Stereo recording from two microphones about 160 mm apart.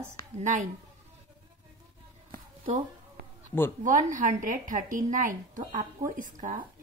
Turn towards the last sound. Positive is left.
turn(degrees=-55)  # may be behind; listen again after turning